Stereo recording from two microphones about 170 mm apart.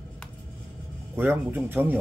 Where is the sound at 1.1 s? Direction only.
15° right (ahead or behind).